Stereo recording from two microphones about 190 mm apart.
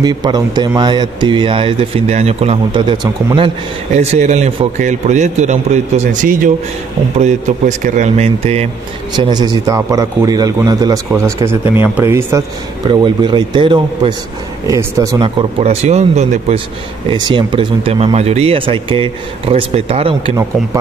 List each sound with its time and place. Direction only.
0.0 s a man's voice: 20° right (ahead or behind)
9.1 s a man's voice: 20° right (ahead or behind)